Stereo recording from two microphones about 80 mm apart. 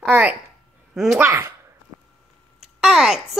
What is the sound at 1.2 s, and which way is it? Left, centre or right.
Speech, right.